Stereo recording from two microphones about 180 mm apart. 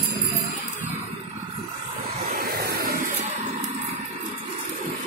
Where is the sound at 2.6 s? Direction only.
60° right (ahead or behind).